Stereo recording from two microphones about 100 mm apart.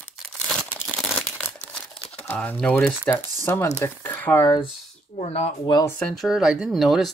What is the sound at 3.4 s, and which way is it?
Speech, 25° left (ahead or behind).